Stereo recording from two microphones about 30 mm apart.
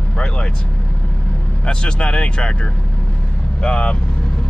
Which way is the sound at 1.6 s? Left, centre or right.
Left.